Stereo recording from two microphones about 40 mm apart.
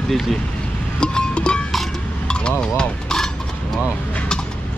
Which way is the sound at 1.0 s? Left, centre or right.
Left.